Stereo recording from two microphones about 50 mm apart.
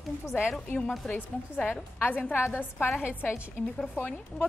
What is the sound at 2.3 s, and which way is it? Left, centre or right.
Speech, left.